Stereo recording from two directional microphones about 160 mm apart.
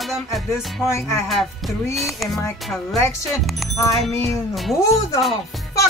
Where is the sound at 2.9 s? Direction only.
20° left (ahead or behind).